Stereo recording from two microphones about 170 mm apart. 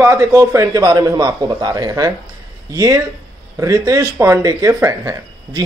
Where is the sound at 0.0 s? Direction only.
15° right (ahead or behind).